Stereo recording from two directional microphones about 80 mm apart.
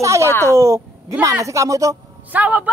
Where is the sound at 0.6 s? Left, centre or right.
Right.